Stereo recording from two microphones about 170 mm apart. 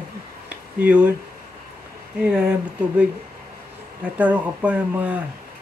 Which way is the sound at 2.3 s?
5° right (ahead or behind).